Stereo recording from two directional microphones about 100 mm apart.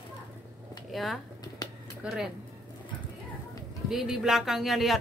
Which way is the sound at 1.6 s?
40° left (ahead or behind).